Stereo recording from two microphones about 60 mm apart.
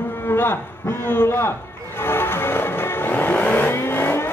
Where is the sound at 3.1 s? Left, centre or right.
Left.